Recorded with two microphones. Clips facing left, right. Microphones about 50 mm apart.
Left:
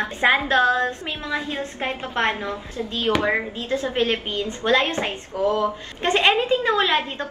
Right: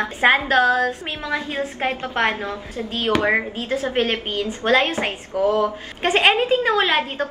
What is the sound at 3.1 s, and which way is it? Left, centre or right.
Speech, centre.